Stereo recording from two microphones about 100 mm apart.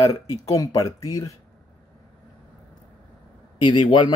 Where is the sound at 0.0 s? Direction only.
35° left (ahead or behind).